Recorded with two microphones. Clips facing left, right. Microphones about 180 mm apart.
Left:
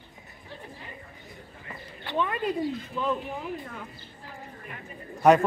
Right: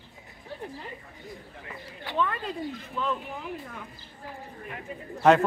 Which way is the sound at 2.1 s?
15° left (ahead or behind).